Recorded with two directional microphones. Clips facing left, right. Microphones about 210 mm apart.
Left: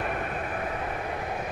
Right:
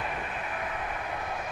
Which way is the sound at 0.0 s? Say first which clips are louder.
Left 4 dB; 50° left (ahead or behind).